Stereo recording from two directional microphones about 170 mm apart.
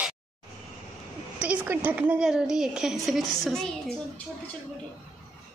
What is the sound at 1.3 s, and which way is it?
A woman's voice, 10° right (ahead or behind).